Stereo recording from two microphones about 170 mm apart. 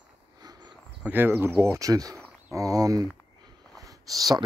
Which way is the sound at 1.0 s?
10° right (ahead or behind).